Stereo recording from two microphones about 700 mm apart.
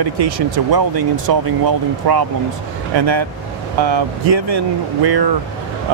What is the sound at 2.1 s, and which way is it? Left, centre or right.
Speech, right.